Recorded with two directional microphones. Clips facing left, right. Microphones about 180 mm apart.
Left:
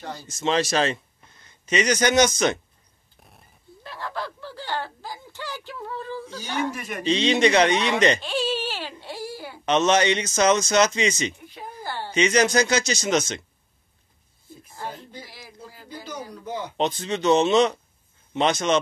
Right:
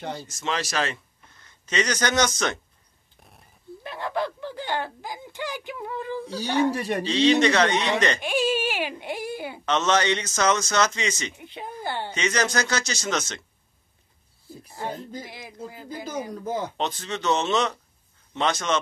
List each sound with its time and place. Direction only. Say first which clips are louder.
0.0 s speech: right 3 dB; 20° right (ahead or behind)
0.3 s speech: left 9 dB; 25° left (ahead or behind)
1.7 s a man's voice: left 4 dB; 15° left (ahead or behind)
3.2 s a sound: even; centre (ahead or behind)
3.8 s a sound: right 4 dB; 20° right (ahead or behind)
6.2 s speech: right 7 dB; 35° right (ahead or behind)
7.1 s a man's voice: even; 20° left (ahead or behind)
8.2 s speech: right 2 dB; 10° right (ahead or behind)
9.7 s a man's voice: left 3 dB; 15° left (ahead or behind)
11.3 s speech: right 2 dB; 20° right (ahead or behind)
12.1 s a man's voice: left 7 dB; 15° left (ahead or behind)
15.2 s speech: right 5 dB; 20° right (ahead or behind)
16.4 s speech: right 2 dB; 45° right (ahead or behind)
16.7 s a man's voice: left 4 dB; 20° left (ahead or behind)